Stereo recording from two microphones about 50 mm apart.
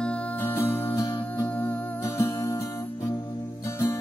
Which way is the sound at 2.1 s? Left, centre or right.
Left.